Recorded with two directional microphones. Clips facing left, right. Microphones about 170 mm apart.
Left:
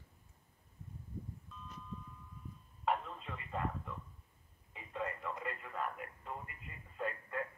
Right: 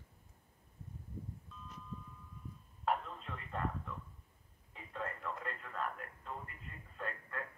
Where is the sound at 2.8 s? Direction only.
Centre (ahead or behind).